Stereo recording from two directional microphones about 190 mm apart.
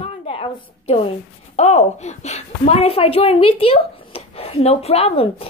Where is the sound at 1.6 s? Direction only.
35° left (ahead or behind).